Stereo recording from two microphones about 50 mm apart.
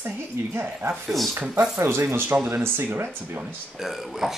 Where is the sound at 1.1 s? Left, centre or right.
Centre.